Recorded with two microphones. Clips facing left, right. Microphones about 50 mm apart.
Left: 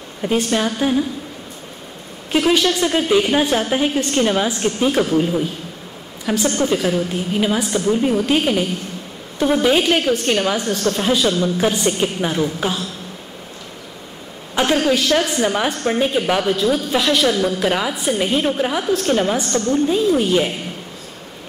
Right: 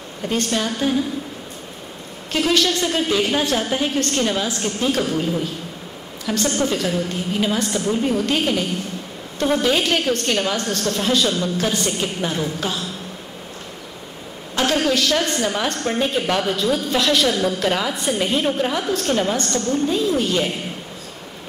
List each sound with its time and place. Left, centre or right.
0.2 s a woman's voice: centre
2.3 s a woman's voice: centre
14.5 s a sound: centre
14.8 s a woman's voice: centre